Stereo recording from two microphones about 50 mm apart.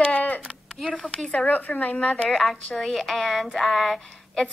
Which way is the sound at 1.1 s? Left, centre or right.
Centre.